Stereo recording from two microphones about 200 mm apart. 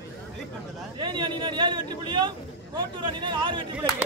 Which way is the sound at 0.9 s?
25° right (ahead or behind).